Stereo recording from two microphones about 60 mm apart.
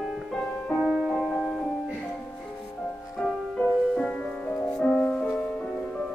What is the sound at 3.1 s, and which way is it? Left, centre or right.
Music, centre.